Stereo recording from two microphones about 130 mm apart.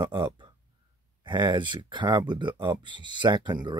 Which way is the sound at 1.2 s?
35° right (ahead or behind).